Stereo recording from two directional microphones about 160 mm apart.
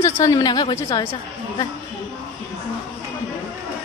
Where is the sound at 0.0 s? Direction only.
20° left (ahead or behind).